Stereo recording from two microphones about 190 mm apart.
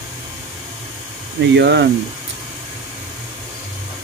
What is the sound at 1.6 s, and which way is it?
Speech, 65° right (ahead or behind).